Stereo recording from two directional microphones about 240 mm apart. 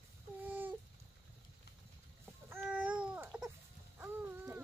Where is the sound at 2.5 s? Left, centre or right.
Centre.